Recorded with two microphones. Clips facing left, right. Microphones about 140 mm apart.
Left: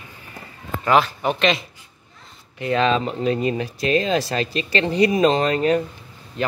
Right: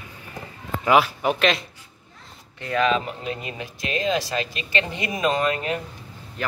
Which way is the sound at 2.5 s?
20° left (ahead or behind).